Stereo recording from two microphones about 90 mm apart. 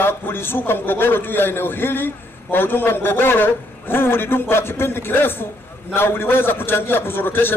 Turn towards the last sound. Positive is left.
turn(degrees=25)  # may be behind; listen again after turning